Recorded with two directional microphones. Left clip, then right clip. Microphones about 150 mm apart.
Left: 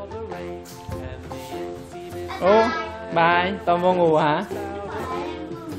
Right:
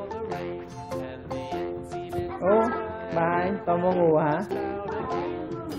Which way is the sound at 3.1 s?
35° left (ahead or behind).